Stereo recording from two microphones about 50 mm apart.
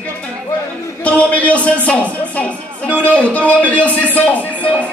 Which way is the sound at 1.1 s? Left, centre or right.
Left.